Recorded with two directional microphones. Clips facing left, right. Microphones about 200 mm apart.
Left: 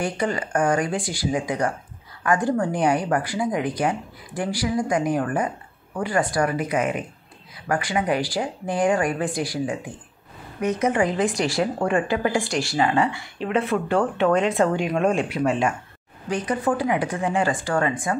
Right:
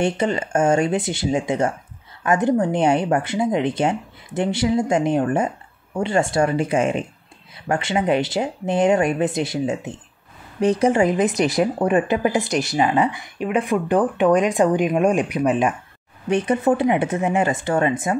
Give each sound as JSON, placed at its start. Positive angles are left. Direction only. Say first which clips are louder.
{"t": 0.0, "sound": "a woman's voice", "louder": "right 4 dB", "side_deg": -25}